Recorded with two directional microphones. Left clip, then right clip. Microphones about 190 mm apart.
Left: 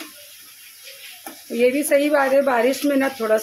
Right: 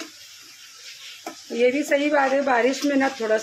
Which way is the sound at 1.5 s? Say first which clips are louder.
Left 3 dB; 20° left (ahead or behind).